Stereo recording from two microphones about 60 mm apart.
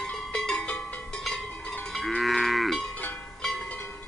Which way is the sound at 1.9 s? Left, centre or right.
Centre.